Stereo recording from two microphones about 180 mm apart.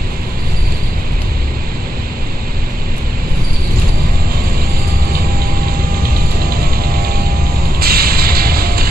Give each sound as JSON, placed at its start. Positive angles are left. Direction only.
{"t": 6.0, "sound": "music", "side_deg": -55}